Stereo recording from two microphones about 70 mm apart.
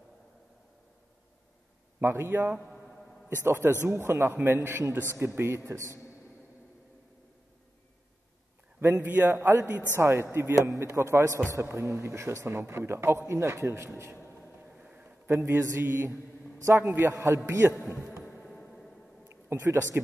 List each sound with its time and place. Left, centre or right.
2.0 s a man's voice: right
2.7 s a sound: centre
3.3 s a man's voice: right
8.8 s a man's voice: right
9.9 s a man's voice: right
14.7 s a sound: centre
15.2 s a man's voice: right
17.5 s a man's voice: right
18.2 s music: centre
19.2 s a sound: right